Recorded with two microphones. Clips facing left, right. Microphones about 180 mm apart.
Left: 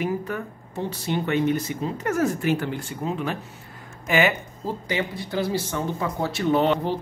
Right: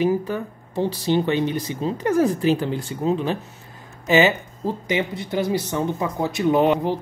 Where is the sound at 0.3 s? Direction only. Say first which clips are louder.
Right 4 dB; 30° right (ahead or behind).